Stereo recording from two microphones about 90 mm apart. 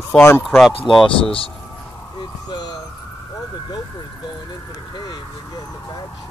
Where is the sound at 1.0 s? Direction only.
85° left.